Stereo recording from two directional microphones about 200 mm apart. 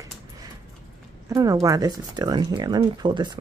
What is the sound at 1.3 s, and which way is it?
A woman's voice, 15° right (ahead or behind).